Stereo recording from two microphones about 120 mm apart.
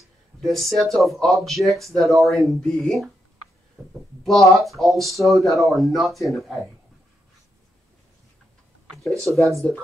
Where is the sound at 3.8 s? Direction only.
20° right (ahead or behind).